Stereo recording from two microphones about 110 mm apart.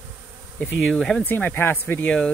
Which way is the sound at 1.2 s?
15° left (ahead or behind).